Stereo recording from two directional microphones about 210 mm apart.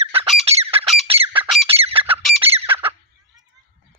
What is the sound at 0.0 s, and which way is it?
Squawk, 25° right (ahead or behind).